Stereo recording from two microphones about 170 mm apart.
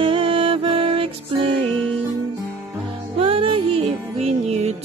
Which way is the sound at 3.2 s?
35° right (ahead or behind).